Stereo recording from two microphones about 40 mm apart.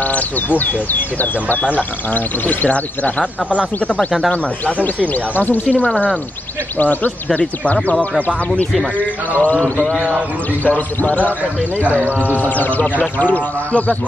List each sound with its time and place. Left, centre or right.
0.0 s speech: left
4.8 s speech: left
10.6 s speech: left